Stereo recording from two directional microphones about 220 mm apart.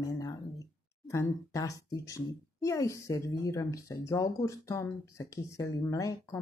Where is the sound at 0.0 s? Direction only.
15° left (ahead or behind).